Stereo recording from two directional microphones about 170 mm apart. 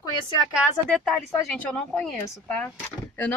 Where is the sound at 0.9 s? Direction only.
5° left (ahead or behind).